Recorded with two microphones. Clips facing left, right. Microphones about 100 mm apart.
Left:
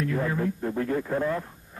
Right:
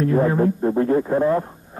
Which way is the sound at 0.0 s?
35° right (ahead or behind).